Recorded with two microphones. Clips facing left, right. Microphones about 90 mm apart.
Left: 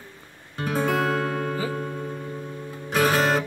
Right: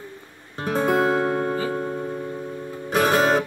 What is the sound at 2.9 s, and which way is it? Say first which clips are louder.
Music: right 2 dB; 10° right (ahead or behind).